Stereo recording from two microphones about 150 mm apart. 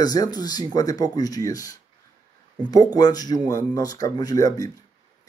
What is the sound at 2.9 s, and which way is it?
Speech, 25° left (ahead or behind).